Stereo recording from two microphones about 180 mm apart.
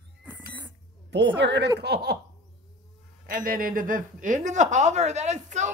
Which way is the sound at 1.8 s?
65° right (ahead or behind).